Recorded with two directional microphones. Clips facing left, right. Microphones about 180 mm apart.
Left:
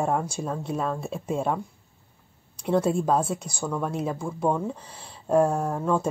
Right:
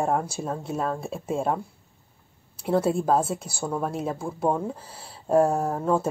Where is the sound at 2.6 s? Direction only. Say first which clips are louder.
Even; 5° right (ahead or behind).